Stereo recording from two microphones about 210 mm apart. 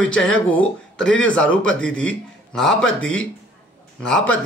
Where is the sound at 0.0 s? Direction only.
5° left (ahead or behind).